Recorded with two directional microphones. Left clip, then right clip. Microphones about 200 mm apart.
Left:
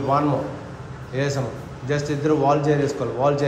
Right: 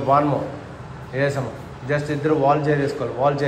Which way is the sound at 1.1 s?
10° left (ahead or behind).